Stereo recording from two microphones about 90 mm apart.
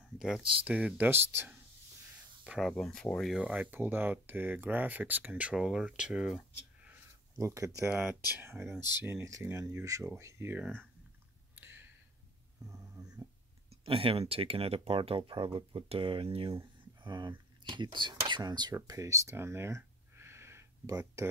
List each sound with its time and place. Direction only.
0.2 s speech: 10° right (ahead or behind)
2.8 s speech: 5° left (ahead or behind)
3.3 s speech: 15° right (ahead or behind)
7.3 s speech: 35° right (ahead or behind)
7.9 s speech: 20° right (ahead or behind)
11.5 s clicking: 25° right (ahead or behind)
13.8 s speech: 85° right; by 15.5 s 70° right (ahead or behind)
15.7 s speech: 80° right
17.0 s speech: 55° right (ahead or behind)
18.9 s a sound: 35° right (ahead or behind)